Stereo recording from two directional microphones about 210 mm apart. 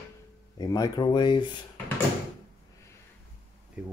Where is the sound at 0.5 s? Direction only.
20° left (ahead or behind).